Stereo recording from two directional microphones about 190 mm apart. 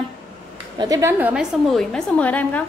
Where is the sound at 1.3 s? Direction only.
5° right (ahead or behind).